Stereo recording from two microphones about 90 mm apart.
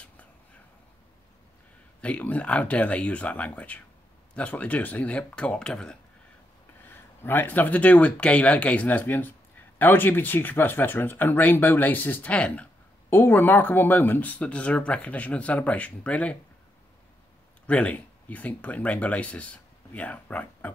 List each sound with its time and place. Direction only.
2.0 s speech: 15° left (ahead or behind)
6.9 s speech: 25° left (ahead or behind)
17.6 s speech: 15° left (ahead or behind)